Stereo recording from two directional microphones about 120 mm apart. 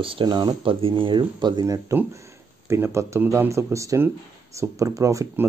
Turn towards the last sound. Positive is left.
turn(degrees=-25)  # may be behind; listen again after turning